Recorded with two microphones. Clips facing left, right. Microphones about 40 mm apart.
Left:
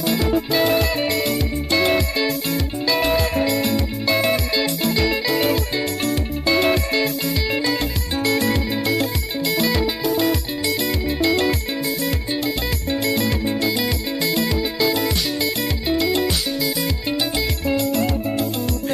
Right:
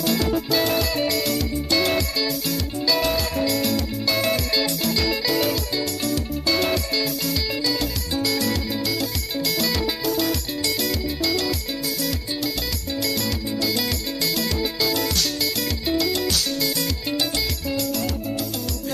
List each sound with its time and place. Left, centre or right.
0.0 s music: centre
8.2 s music: left
9.5 s music: centre
11.1 s music: left
13.0 s music: left